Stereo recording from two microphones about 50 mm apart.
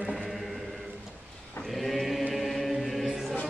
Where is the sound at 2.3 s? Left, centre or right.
Centre.